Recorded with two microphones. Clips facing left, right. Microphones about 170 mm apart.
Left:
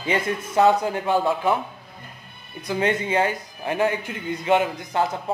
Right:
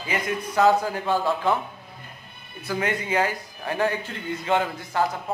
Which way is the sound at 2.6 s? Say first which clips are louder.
Left 4 dB; 20° left (ahead or behind).